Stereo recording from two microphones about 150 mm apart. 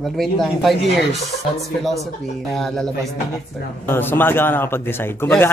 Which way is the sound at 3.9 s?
15° left (ahead or behind).